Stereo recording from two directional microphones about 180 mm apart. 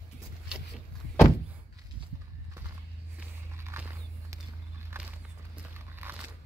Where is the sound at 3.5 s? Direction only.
15° right (ahead or behind).